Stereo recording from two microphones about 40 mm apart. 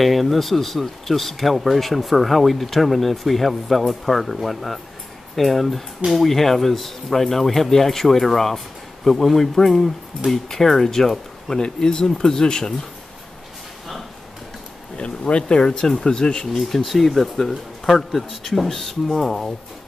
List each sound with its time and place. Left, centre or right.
0.0 s speech: centre
11.5 s speech: centre
15.0 s speech: left
16.5 s speech: centre